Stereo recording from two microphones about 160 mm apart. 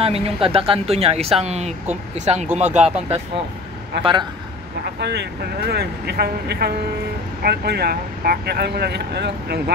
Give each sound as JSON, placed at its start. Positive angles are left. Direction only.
{"t": 0.0, "sound": "speech", "side_deg": -40}
{"t": 4.0, "sound": "a man's voice", "side_deg": -30}
{"t": 5.0, "sound": "speech", "side_deg": -90}